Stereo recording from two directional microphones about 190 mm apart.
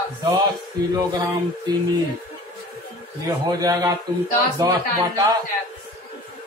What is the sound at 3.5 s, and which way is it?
Speech, 20° right (ahead or behind).